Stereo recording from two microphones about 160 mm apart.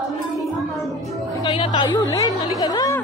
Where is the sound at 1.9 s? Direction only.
20° left (ahead or behind).